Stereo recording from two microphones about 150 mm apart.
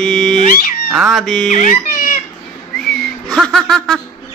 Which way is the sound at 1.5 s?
55° left (ahead or behind).